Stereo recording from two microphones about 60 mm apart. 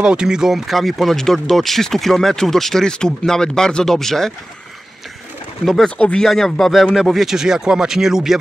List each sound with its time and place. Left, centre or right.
0.0 s speech: centre
5.9 s speech: left
6.2 s speech: centre